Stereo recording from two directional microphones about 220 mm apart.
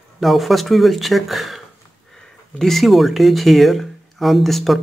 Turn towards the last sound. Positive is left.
turn(degrees=0)  # may be behind; listen again after turning